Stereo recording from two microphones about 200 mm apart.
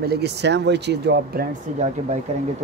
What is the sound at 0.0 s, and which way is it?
Speech, 55° right (ahead or behind).